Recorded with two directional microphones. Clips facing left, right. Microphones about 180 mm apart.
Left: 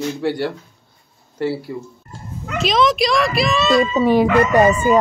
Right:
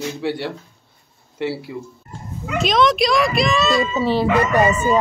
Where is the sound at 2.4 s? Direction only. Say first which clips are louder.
Even; centre (ahead or behind).